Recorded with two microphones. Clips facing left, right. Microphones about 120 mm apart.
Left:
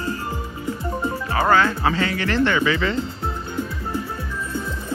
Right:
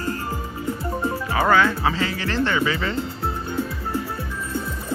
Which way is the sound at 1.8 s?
25° right (ahead or behind).